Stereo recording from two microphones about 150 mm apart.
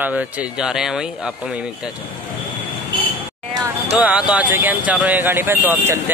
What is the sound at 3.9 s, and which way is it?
Speech, 10° right (ahead or behind).